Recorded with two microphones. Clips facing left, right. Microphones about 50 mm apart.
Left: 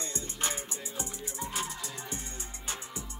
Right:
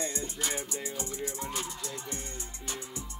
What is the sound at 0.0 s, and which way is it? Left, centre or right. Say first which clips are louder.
Music: right 4 dB; right.